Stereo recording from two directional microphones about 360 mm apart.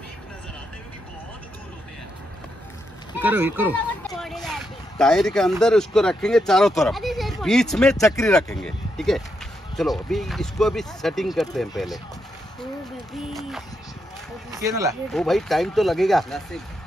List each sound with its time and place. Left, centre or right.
3.2 s speech: centre
13.3 s speech: centre